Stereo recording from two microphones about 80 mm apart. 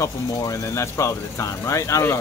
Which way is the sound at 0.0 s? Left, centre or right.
Left.